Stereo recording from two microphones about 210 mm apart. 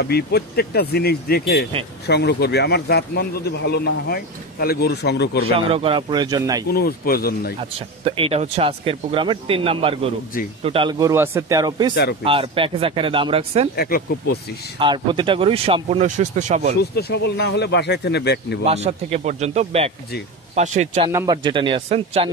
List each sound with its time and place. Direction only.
0.0 s a man's voice: 50° left (ahead or behind)
5.7 s speech: 25° right (ahead or behind)
6.7 s a man's voice: 45° left (ahead or behind)
8.0 s speech: 25° right (ahead or behind)
11.9 s a man's voice: 55° left (ahead or behind)
12.3 s speech: 25° right (ahead or behind)
13.7 s a man's voice: 45° left (ahead or behind)
14.8 s speech: 25° right (ahead or behind)
16.9 s a man's voice: 50° left (ahead or behind)
18.7 s a man's voice: 30° right (ahead or behind)
21.1 s speech: 15° right (ahead or behind)